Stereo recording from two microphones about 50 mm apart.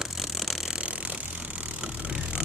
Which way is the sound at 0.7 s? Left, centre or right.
Right.